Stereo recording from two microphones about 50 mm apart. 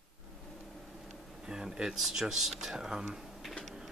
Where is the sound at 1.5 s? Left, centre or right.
Centre.